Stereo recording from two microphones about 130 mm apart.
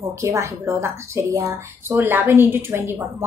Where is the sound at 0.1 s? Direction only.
20° right (ahead or behind).